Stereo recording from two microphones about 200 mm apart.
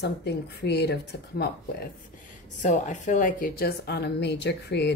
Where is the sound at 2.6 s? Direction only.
40° left (ahead or behind).